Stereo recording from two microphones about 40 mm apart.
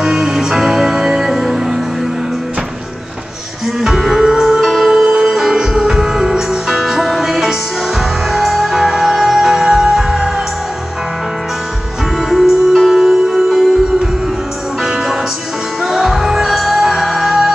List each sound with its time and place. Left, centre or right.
0.0 s music: centre
3.6 s music: centre
12.2 s music: centre
14.8 s music: centre